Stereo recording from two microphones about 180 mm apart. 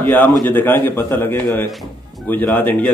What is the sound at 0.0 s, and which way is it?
A man's voice, 10° left (ahead or behind).